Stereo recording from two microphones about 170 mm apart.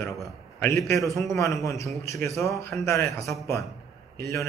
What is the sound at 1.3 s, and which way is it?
Speech, 20° left (ahead or behind).